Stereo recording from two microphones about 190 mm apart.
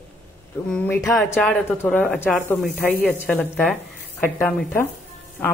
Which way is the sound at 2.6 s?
10° left (ahead or behind).